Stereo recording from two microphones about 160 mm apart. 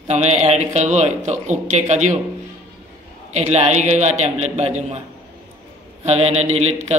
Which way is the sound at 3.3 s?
45° right (ahead or behind).